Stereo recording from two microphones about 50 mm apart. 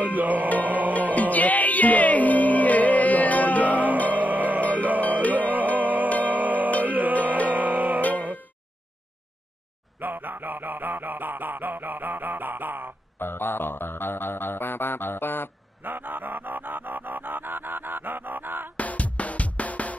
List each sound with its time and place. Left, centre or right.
0.0 s music: right
1.1 s music: left
3.6 s music: right
9.9 s music: right
13.2 s music: left
15.8 s music: right
18.8 s music: left